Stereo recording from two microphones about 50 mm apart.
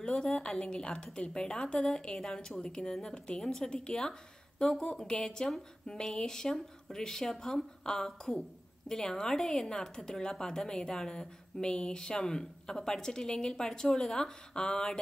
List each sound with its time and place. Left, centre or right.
0.0 s a woman's voice: centre